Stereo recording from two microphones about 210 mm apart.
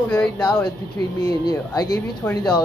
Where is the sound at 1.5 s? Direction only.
15° left (ahead or behind).